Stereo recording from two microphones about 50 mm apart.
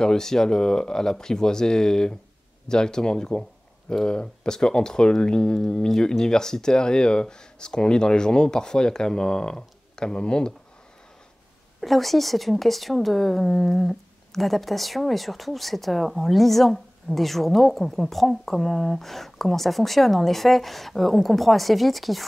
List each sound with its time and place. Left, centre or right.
0.0 s speech: centre
11.8 s a woman's voice: centre